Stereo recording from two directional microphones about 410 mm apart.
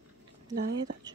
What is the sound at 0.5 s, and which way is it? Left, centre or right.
Speech, right.